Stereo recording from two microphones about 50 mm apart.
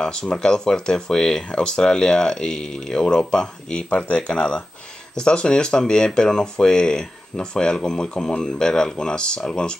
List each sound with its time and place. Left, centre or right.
0.0 s speech: centre